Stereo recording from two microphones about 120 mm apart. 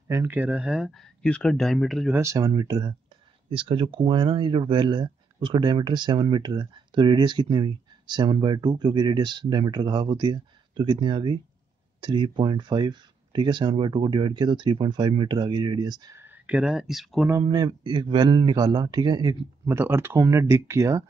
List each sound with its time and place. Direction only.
0.1 s speech: 20° right (ahead or behind); by 2.1 s centre (ahead or behind)
2.1 s speech: 25° right (ahead or behind)
16.2 s speech: 15° right (ahead or behind)
17.4 s speech: 35° right (ahead or behind)
19.7 s speech: 20° right (ahead or behind)